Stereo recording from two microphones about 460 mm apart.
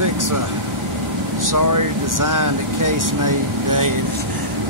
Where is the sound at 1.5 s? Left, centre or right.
Right.